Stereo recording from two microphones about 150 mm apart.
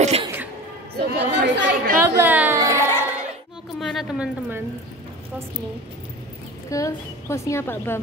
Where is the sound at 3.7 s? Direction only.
Centre (ahead or behind).